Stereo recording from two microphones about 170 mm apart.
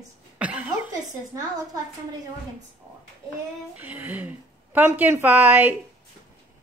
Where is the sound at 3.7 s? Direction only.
10° right (ahead or behind).